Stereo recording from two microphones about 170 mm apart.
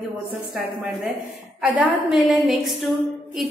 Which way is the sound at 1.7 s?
Centre (ahead or behind).